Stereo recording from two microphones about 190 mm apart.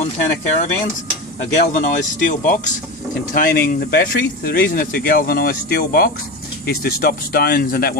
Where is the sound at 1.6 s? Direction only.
40° left (ahead or behind).